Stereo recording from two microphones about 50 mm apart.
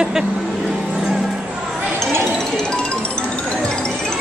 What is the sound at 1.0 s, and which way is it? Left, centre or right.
Music, centre.